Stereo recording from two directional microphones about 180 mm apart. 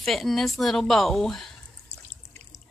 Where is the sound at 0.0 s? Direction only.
Centre (ahead or behind).